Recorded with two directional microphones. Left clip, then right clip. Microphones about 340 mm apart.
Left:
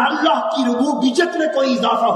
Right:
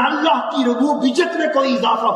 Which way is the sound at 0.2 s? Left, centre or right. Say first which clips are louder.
Even; left.